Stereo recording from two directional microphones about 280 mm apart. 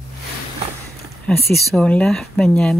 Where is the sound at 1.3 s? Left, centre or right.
Left.